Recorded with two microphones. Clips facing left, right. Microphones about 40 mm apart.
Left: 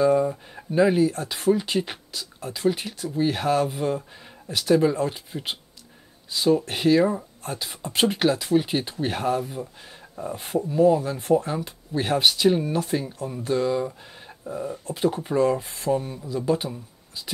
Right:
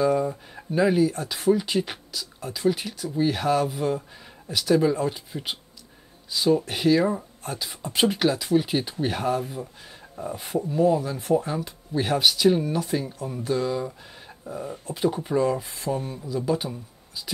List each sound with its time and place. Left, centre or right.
0.0 s speech: centre
4.9 s speech: centre
10.3 s speech: centre
10.6 s speech: centre
11.1 s speech: centre
11.3 s speech: centre